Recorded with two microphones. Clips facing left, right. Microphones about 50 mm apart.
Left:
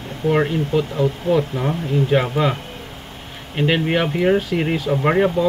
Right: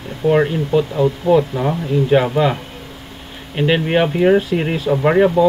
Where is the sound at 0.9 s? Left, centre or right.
Right.